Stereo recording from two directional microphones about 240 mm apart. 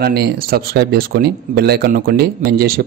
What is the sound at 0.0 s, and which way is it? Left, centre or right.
Speech, right.